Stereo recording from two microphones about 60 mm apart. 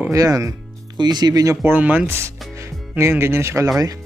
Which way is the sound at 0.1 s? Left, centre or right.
Right.